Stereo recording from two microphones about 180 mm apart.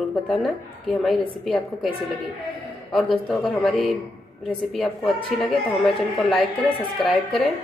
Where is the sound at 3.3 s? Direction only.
Centre (ahead or behind).